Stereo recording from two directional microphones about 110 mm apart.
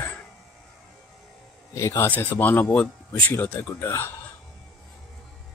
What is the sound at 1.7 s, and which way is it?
Speech, 25° left (ahead or behind).